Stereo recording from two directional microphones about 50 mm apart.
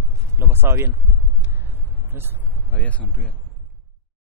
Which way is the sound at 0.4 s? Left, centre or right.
Right.